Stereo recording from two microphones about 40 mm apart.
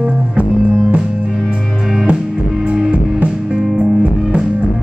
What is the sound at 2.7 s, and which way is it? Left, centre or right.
Music, right.